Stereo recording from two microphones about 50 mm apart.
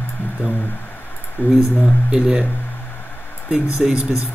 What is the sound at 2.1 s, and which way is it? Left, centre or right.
Speech, centre.